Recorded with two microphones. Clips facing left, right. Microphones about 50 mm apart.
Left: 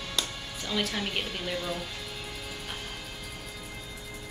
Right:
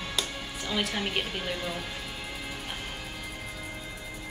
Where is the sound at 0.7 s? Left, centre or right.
Centre.